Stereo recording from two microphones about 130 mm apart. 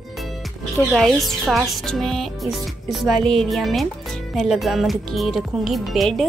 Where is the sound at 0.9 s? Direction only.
Centre (ahead or behind).